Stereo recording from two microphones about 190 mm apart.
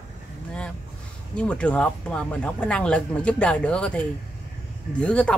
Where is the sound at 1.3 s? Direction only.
5° left (ahead or behind).